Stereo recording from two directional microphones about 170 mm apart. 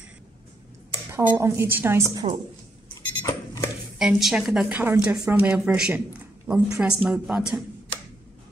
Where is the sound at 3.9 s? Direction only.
Centre (ahead or behind).